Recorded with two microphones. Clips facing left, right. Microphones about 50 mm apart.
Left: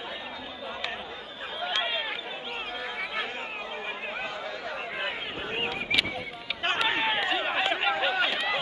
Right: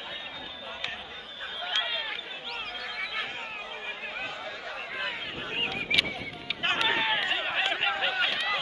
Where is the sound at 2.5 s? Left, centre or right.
Centre.